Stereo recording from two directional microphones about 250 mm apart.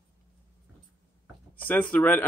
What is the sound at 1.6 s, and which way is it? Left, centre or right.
Speech, centre.